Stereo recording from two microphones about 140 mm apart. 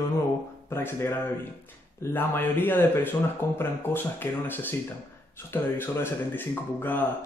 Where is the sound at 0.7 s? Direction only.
15° left (ahead or behind).